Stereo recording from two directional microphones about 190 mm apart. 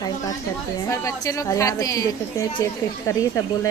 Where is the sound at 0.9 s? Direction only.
15° left (ahead or behind).